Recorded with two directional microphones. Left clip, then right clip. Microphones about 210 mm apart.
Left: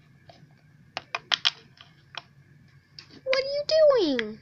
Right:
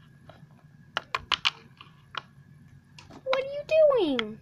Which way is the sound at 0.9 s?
25° right (ahead or behind).